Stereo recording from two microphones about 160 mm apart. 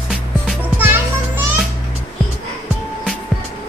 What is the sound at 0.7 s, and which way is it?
Music, 15° right (ahead or behind).